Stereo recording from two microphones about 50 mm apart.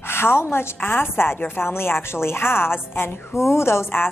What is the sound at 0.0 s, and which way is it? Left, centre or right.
A woman's voice, left.